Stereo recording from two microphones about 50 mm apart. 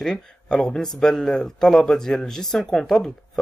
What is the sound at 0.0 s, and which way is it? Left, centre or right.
Speech, centre.